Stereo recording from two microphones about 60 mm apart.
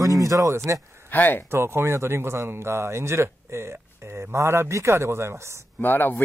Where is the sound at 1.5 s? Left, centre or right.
Right.